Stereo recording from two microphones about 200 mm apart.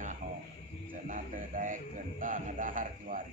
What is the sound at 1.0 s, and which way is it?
Speech, 40° right (ahead or behind).